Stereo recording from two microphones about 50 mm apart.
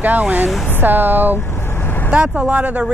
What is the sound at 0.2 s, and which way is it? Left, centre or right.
Speech, right.